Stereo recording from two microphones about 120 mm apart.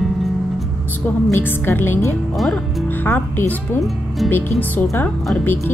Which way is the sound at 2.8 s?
15° left (ahead or behind).